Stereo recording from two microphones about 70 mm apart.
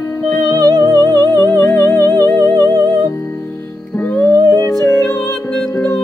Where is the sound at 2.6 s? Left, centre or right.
Right.